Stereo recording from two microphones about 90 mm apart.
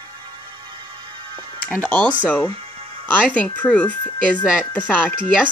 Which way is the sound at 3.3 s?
15° left (ahead or behind).